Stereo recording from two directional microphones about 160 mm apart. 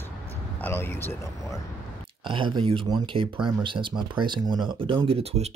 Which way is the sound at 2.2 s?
30° right (ahead or behind).